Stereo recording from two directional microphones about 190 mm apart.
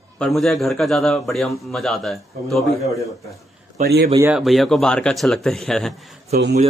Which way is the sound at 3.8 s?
60° right (ahead or behind).